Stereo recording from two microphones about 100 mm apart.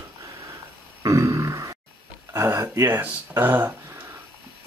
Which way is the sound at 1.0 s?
30° right (ahead or behind).